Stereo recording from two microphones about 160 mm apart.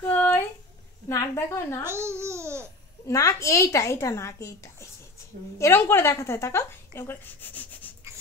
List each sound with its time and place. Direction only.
0.1 s a sound: 10° left (ahead or behind)
1.0 s a woman's voice: 20° left (ahead or behind)
1.9 s babbling: 15° right (ahead or behind)
3.1 s a woman's voice: 20° left (ahead or behind)